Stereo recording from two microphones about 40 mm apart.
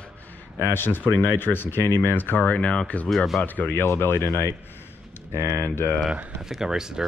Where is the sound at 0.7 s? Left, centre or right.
Left.